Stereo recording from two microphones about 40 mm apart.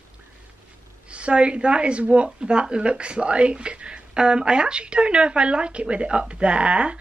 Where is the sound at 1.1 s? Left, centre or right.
Right.